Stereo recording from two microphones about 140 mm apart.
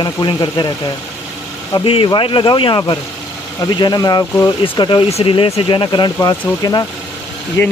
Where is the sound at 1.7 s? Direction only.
40° left (ahead or behind); by 7.7 s 20° left (ahead or behind).